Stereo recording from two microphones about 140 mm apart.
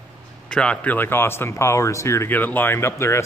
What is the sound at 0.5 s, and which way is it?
Speech, 10° left (ahead or behind).